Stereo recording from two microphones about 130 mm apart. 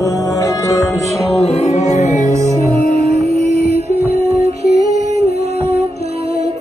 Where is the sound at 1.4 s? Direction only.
55° left (ahead or behind).